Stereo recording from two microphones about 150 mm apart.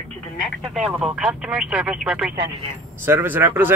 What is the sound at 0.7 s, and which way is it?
Speech, 5° right (ahead or behind).